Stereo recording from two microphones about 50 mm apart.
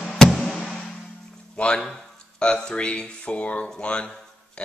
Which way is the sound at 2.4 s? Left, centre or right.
Centre.